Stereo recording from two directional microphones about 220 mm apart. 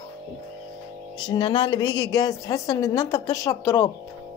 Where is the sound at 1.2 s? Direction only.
20° left (ahead or behind).